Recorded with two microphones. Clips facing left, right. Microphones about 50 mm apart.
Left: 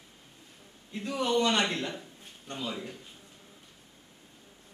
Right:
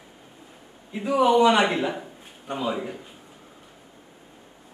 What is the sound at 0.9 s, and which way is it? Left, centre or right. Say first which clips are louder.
A man's voice: right 10 dB; centre.